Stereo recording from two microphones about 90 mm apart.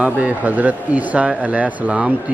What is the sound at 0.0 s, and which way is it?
Speech, 15° right (ahead or behind).